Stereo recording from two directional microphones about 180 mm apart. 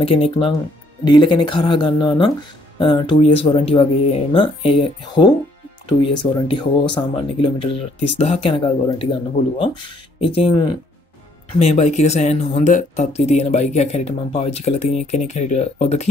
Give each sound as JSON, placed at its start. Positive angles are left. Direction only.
{"t": 0.0, "sound": "speech", "side_deg": 30}